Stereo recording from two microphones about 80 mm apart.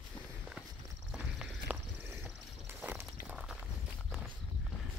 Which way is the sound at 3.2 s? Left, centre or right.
Centre.